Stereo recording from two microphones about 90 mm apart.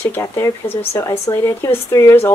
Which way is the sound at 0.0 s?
25° left (ahead or behind).